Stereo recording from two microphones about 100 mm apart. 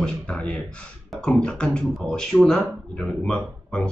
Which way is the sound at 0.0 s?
10° left (ahead or behind).